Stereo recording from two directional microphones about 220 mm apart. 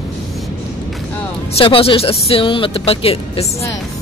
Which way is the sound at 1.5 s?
25° left (ahead or behind).